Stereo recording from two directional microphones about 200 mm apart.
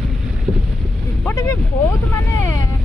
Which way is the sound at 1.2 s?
15° left (ahead or behind).